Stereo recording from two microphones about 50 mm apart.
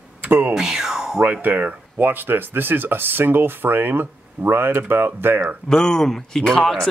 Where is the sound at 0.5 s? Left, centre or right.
Centre.